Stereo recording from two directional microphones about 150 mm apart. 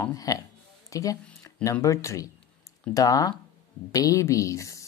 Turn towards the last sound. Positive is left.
turn(degrees=20)  # may be behind; listen again after turning